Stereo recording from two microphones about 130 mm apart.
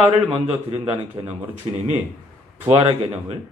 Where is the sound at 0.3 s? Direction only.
45° right (ahead or behind).